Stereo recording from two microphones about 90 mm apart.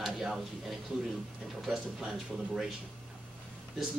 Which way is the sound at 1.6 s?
5° right (ahead or behind).